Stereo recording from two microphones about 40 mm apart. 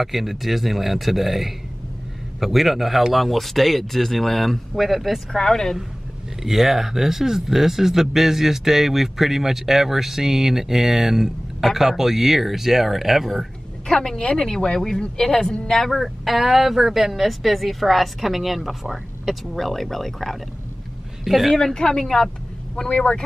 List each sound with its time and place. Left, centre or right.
0.0 s a woman's voice: centre
4.7 s a woman's voice: centre
5.3 s speech: centre
6.4 s speech: centre
13.8 s a woman's voice: centre
19.5 s speech: centre
21.7 s speech: centre
22.8 s speech: left